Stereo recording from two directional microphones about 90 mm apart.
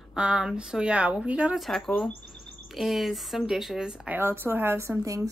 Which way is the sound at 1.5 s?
Centre (ahead or behind).